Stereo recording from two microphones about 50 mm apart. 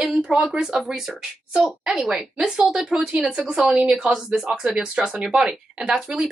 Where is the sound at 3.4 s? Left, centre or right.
Right.